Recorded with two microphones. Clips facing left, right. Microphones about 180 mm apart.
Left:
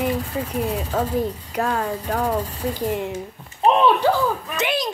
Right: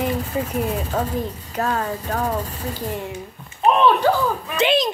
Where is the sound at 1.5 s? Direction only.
10° left (ahead or behind).